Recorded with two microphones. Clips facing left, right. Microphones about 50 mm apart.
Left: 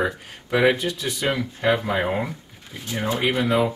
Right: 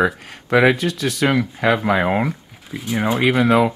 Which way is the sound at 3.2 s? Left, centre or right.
Right.